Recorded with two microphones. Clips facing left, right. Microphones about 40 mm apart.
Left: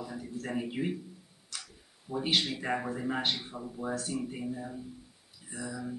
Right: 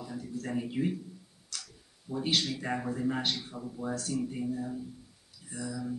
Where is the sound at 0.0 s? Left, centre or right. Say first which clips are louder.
Even; centre.